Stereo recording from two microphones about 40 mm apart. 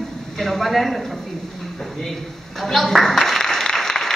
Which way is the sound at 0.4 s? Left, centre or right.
Centre.